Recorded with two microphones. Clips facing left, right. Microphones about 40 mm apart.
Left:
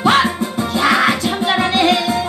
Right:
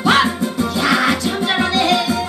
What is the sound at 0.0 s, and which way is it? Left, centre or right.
Music, left.